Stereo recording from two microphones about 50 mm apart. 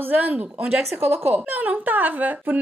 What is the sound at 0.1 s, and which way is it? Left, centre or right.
Speech, right.